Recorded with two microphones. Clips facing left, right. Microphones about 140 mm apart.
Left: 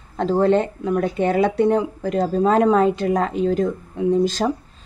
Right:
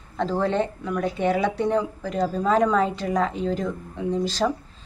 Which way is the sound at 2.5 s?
50° left (ahead or behind).